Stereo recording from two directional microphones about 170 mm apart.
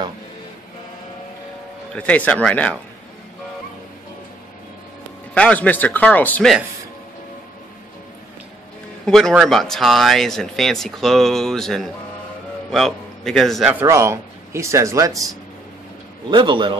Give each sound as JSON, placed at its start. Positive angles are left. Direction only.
{"t": 2.0, "sound": "speech", "side_deg": 10}
{"t": 5.3, "sound": "speech", "side_deg": 5}
{"t": 9.0, "sound": "a man's voice", "side_deg": 0}
{"t": 13.8, "sound": "a man's voice", "side_deg": -15}